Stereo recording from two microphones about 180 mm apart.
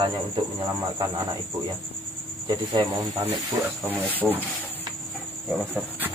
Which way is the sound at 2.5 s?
25° right (ahead or behind).